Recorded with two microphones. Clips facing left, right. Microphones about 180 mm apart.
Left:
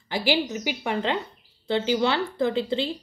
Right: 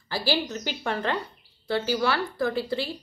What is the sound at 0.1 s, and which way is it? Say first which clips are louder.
A woman's voice: left 3 dB; 20° left (ahead or behind).